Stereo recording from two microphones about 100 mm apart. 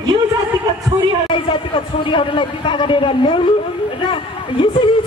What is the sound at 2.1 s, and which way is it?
Speech, 55° left (ahead or behind).